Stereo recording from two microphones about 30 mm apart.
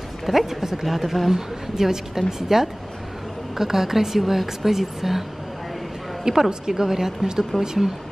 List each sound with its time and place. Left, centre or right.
0.3 s a woman's voice: centre
1.3 s a woman's voice: centre
6.3 s a woman's voice: right
6.7 s a woman's voice: centre